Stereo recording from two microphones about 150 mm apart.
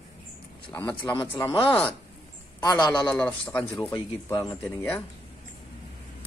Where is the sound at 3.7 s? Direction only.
30° left (ahead or behind).